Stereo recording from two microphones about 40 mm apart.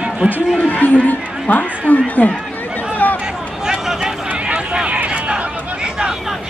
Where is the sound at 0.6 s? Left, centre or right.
Left.